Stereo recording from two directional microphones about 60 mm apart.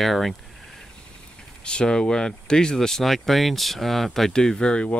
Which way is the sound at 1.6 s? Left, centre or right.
Centre.